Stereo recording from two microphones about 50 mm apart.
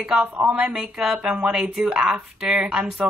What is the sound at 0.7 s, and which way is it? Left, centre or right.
Speech, centre.